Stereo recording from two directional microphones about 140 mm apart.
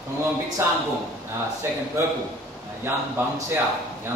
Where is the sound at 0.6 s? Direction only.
20° right (ahead or behind).